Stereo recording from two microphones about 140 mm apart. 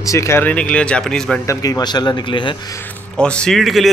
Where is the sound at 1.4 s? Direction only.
25° left (ahead or behind).